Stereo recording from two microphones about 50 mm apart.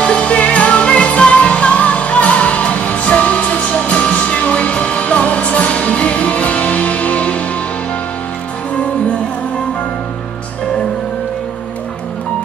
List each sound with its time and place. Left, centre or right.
0.0 s music: left